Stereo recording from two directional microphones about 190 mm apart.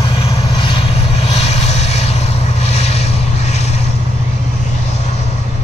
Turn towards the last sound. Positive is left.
turn(degrees=35)  # may be behind; listen again after turning